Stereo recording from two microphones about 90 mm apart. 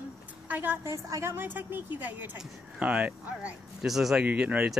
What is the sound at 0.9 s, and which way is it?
Speech, 35° right (ahead or behind).